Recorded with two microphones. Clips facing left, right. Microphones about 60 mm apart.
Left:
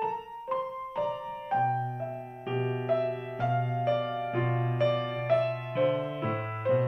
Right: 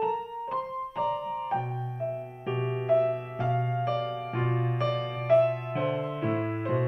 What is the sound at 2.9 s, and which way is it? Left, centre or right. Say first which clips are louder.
Music: right 7 dB; centre.